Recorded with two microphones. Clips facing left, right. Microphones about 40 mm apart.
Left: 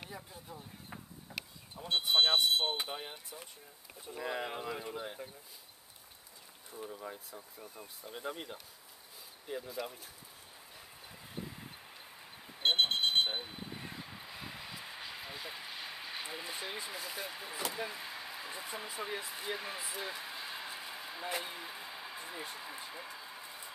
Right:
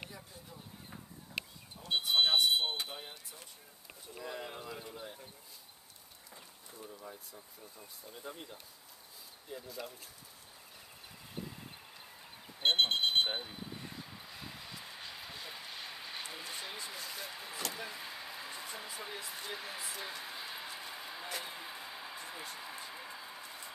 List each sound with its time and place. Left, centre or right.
0.1 s a sound: centre
1.9 s vehicle: centre
2.7 s speech: centre
4.2 s speech: left
6.7 s speech: left
9.6 s speech: centre
12.5 s vehicle: centre
21.3 s speech: centre
21.5 s a sound: centre